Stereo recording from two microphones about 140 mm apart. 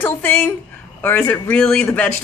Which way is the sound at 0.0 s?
15° left (ahead or behind).